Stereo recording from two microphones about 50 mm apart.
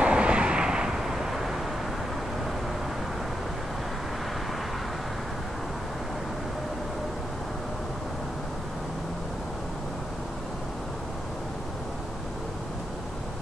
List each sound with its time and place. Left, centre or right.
0.0 s vehicle: right; by 1.5 s centre